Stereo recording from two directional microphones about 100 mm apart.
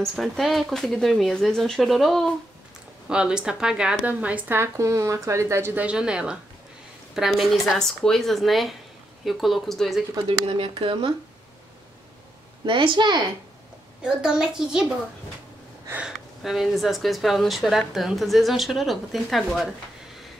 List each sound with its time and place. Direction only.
0.0 s a woman's voice: centre (ahead or behind)
3.1 s speech: 10° right (ahead or behind)
4.6 s speech: 30° right (ahead or behind)
5.9 s a woman's voice: 10° right (ahead or behind)
10.8 s speech: 60° right (ahead or behind)
12.6 s a woman's voice: 55° right (ahead or behind)
14.0 s speech: 5° right (ahead or behind)
16.4 s a woman's voice: centre (ahead or behind)